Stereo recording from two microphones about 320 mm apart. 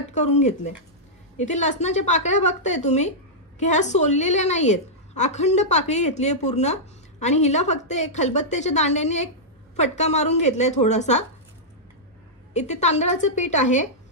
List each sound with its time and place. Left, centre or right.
0.1 s a woman's voice: left
12.5 s a woman's voice: left